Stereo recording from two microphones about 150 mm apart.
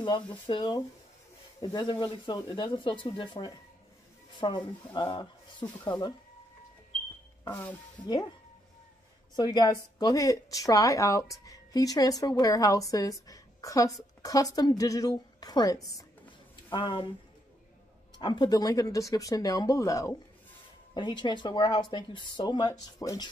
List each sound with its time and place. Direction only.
0.5 s speech: 30° left (ahead or behind)
9.3 s a woman's voice: 30° left (ahead or behind)
18.2 s speech: 30° left (ahead or behind)